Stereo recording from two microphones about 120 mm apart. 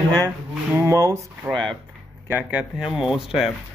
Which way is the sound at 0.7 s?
20° right (ahead or behind).